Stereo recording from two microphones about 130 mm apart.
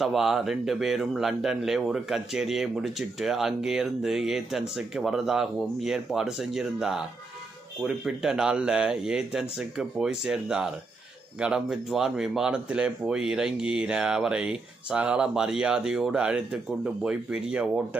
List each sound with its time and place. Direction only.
0.0 s speech: centre (ahead or behind)